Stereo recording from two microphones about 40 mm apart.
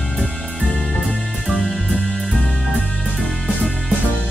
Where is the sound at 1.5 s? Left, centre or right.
Centre.